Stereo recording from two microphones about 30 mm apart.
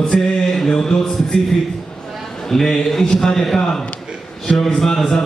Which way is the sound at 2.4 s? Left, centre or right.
Centre.